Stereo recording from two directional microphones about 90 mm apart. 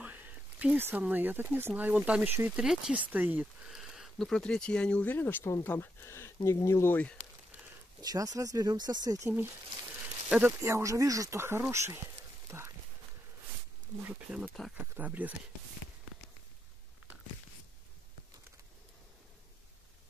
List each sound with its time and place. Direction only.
0.0 s a sound: 15° right (ahead or behind)
0.8 s speech: 20° right (ahead or behind)
3.6 s a sound: 5° right (ahead or behind)
4.3 s speech: 10° left (ahead or behind)
8.0 s speech: 45° right (ahead or behind)
10.6 s speech: 35° right (ahead or behind)
12.4 s horse: 30° right (ahead or behind)
14.0 s speech: 25° right (ahead or behind)